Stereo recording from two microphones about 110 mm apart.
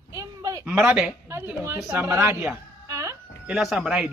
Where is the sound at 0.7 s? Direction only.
10° right (ahead or behind).